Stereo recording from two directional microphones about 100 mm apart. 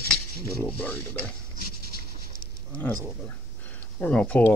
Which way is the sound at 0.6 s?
15° left (ahead or behind).